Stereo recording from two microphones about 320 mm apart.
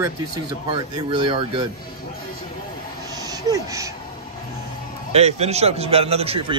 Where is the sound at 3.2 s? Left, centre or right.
Centre.